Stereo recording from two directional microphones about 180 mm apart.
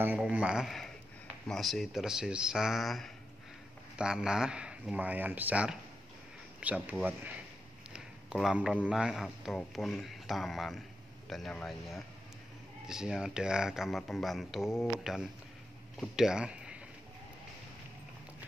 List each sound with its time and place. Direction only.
0.0 s speech: 10° right (ahead or behind)
7.9 s a sound: 5° right (ahead or behind)
8.8 s speech: 5° right (ahead or behind)